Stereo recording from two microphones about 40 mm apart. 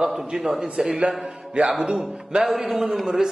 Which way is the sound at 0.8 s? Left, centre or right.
Right.